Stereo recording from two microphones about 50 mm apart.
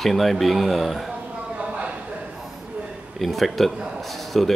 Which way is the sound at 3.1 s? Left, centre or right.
Centre.